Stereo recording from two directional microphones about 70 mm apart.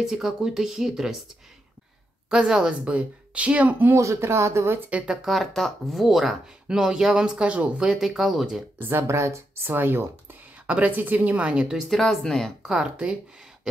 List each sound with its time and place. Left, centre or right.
0.0 s speech: centre
2.2 s speech: centre
3.9 s speech: right
5.0 s speech: centre
8.7 s speech: right
9.7 s a woman's voice: right; by 11.8 s centre
11.9 s speech: centre
12.9 s speech: centre